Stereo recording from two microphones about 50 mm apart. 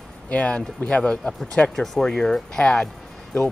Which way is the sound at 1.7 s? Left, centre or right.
Centre.